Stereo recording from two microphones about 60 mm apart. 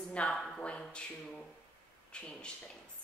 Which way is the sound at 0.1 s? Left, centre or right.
Centre.